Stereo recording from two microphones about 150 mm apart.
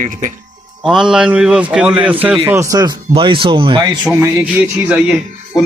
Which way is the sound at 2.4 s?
20° right (ahead or behind).